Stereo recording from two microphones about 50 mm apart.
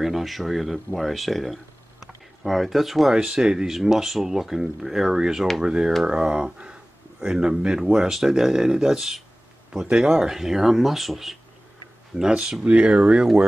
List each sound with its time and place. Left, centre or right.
0.0 s speech: centre
12.2 s speech: centre